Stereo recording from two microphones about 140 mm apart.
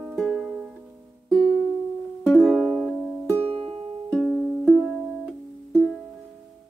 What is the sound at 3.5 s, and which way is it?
Music, 40° right (ahead or behind).